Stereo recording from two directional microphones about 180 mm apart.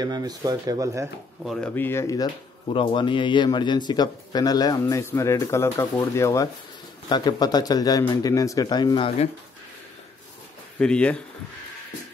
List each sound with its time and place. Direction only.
0.0 s speech: 20° right (ahead or behind)
1.4 s speech: centre (ahead or behind)
1.8 s speech: 15° left (ahead or behind)
10.8 s speech: 5° left (ahead or behind)